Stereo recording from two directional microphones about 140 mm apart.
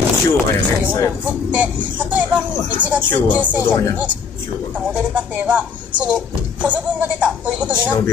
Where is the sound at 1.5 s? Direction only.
10° right (ahead or behind).